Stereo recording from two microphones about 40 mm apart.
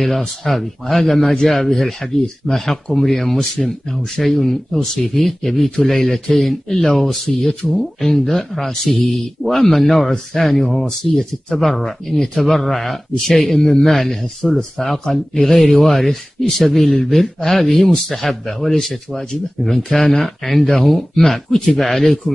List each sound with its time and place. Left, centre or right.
0.0 s a man's voice: centre
15.0 s a man's voice: centre
15.5 s a man's voice: centre